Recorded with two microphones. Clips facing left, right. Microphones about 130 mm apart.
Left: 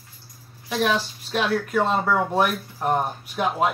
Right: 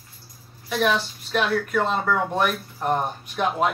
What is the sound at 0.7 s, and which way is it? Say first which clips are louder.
Speech: even; 15° left (ahead or behind).